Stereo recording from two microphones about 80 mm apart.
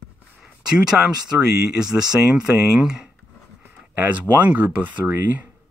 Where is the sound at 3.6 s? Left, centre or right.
Right.